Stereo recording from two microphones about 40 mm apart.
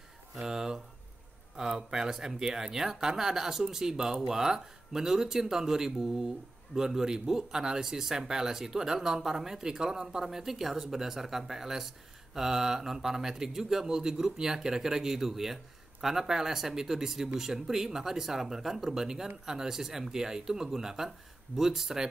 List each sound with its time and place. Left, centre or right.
0.4 s speech: centre